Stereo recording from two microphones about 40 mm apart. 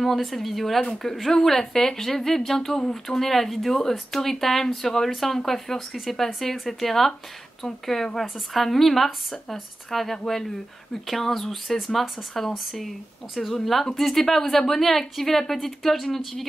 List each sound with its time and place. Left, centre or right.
0.0 s a woman's voice: centre
0.7 s speech: left
1.0 s a woman's voice: centre